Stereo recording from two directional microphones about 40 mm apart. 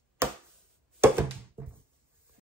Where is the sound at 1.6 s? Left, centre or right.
Right.